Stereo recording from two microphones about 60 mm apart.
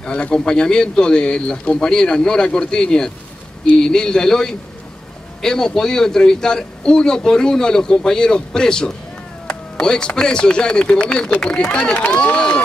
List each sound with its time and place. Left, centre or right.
0.0 s a man's voice: centre